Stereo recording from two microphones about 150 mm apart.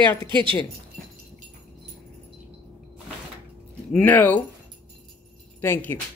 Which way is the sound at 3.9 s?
10° left (ahead or behind).